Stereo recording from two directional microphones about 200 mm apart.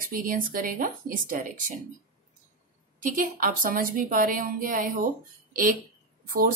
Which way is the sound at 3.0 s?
45° right (ahead or behind).